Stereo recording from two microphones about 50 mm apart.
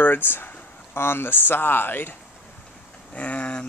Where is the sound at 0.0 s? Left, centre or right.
Left.